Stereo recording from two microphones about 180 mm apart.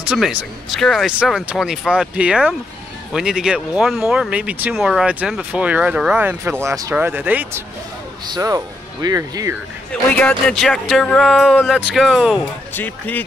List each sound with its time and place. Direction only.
0.0 s speech: 5° right (ahead or behind)
10.1 s speech: 5° left (ahead or behind)
12.7 s speech: 10° left (ahead or behind)